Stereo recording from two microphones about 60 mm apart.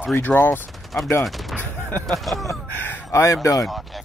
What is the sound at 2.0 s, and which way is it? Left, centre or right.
Speech, centre.